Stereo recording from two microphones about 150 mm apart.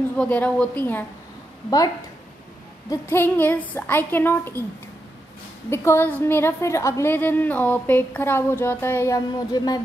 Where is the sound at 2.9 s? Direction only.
15° left (ahead or behind).